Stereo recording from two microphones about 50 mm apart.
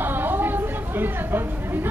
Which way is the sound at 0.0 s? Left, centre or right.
Right.